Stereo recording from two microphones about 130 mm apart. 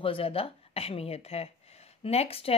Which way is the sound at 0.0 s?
45° left (ahead or behind).